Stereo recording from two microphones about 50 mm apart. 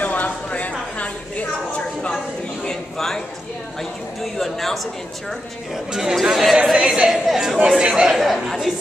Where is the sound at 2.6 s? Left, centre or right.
Centre.